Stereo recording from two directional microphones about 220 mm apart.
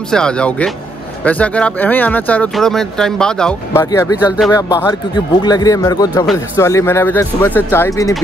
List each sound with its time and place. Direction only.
0.1 s speech: 5° left (ahead or behind)
3.8 s speech: 15° left (ahead or behind)